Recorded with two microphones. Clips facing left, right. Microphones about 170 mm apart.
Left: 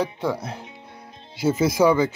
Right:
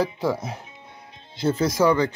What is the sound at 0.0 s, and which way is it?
Speech, centre (ahead or behind).